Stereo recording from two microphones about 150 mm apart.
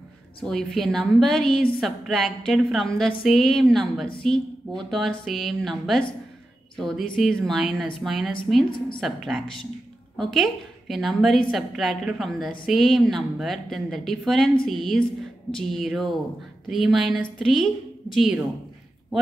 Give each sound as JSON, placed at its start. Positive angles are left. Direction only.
{"t": 0.4, "sound": "a woman's voice", "side_deg": 5}
{"t": 8.7, "sound": "a woman's voice", "side_deg": 35}
{"t": 9.0, "sound": "a woman's voice", "side_deg": 0}